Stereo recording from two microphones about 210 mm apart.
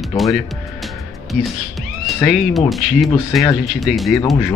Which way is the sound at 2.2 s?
Centre (ahead or behind).